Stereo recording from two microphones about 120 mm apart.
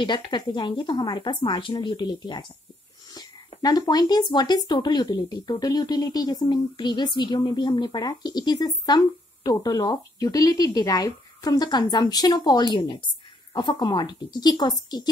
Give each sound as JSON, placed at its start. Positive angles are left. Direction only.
{"t": 0.0, "sound": "speech", "side_deg": 40}
{"t": 3.6, "sound": "speech", "side_deg": 30}